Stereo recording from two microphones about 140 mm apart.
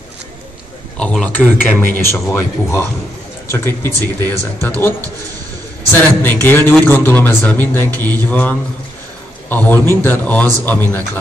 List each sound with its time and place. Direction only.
0.9 s a man's voice: 5° left (ahead or behind)
5.9 s a man's voice: 15° left (ahead or behind)